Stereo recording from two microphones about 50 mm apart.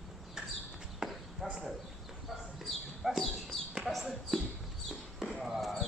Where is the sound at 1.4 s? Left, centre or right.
Centre.